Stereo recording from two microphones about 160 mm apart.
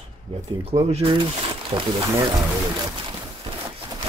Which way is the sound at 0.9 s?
35° right (ahead or behind).